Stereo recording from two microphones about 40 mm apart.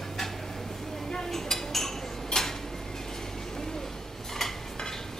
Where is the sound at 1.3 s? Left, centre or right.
Centre.